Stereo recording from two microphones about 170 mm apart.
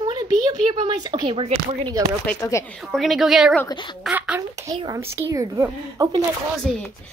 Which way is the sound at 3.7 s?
25° left (ahead or behind).